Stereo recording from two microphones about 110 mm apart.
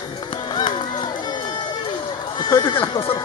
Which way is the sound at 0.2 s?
45° left (ahead or behind).